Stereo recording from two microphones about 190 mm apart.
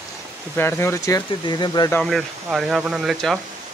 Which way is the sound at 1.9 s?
Centre (ahead or behind).